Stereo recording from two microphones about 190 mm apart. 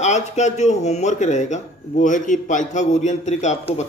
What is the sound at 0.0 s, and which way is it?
Speech, 40° left (ahead or behind).